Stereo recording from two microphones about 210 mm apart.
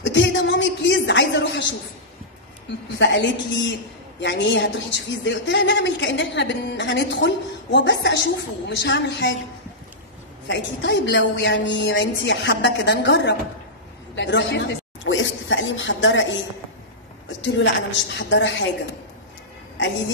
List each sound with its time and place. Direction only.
0.0 s a sound: 60° left (ahead or behind)
3.0 s speech: 55° left (ahead or behind)
10.5 s speech: 55° left (ahead or behind)
17.4 s speech: 60° left (ahead or behind)